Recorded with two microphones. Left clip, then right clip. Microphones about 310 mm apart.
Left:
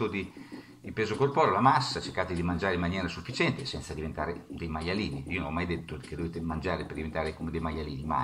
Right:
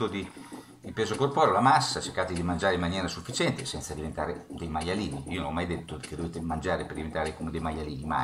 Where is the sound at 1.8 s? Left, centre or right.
Left.